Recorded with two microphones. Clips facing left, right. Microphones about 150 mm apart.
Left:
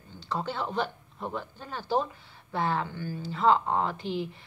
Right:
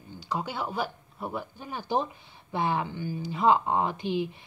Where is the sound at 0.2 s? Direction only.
10° right (ahead or behind).